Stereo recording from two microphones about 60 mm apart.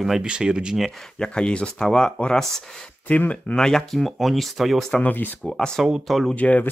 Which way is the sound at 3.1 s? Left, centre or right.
Left.